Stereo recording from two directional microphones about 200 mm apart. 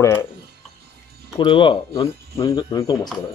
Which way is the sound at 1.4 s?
25° left (ahead or behind).